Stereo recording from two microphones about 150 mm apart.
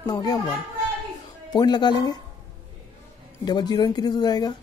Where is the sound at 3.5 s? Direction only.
30° left (ahead or behind).